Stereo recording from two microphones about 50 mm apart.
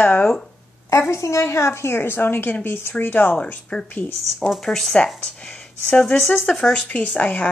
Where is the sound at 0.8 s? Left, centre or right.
Left.